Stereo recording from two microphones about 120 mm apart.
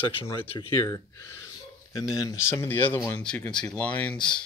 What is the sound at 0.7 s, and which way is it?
Speech, 25° left (ahead or behind).